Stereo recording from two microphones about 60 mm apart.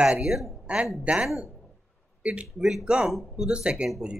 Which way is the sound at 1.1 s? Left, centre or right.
Right.